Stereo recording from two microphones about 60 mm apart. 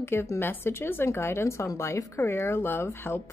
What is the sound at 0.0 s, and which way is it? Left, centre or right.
Speech, left.